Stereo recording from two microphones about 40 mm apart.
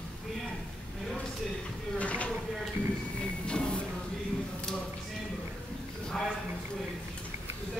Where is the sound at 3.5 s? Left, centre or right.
Left.